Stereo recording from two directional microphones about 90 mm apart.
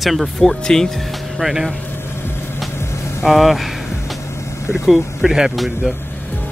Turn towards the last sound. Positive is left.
turn(degrees=-5)  # may be behind; listen again after turning